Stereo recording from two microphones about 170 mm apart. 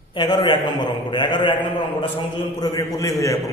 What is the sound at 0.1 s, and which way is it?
A man's voice, 25° left (ahead or behind).